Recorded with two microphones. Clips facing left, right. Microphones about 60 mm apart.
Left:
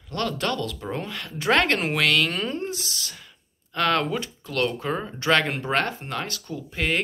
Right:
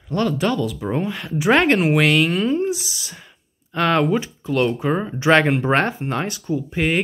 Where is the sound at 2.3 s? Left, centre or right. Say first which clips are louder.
Right 9 dB; centre.